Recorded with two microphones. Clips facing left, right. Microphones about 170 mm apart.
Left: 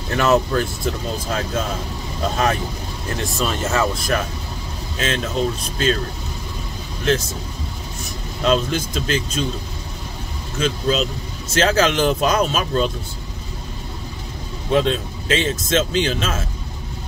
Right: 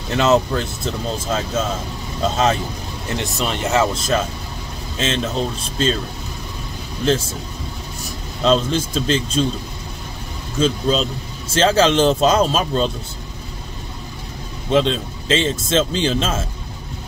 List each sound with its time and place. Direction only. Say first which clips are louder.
0.1 s speech: right 1 dB; 20° right (ahead or behind)
2.3 s speech: right 1 dB; 25° right (ahead or behind)
8.5 s speech: right 2 dB; 30° right (ahead or behind)
10.6 s speech: right 2 dB; 30° right (ahead or behind)
14.7 s speech: right 1 dB; 25° right (ahead or behind)